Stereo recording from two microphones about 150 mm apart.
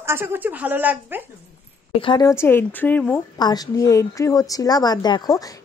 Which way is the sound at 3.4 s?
25° left (ahead or behind).